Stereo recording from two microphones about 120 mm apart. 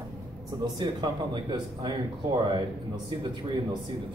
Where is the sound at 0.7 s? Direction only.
40° right (ahead or behind).